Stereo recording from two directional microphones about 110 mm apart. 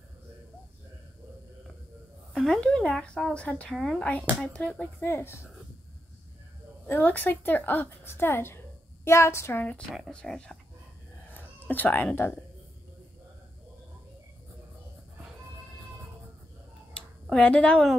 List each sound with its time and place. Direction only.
2.3 s a woman's voice: 5° left (ahead or behind)
3.7 s speech: centre (ahead or behind)
4.0 s a woman's voice: 10° left (ahead or behind)
5.0 s a woman's voice: 20° left (ahead or behind)
6.9 s a woman's voice: 15° left (ahead or behind)
11.3 s speech: 15° left (ahead or behind)
16.9 s a sound: 10° left (ahead or behind)